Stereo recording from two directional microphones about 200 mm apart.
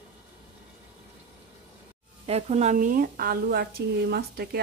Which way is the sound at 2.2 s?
30° right (ahead or behind).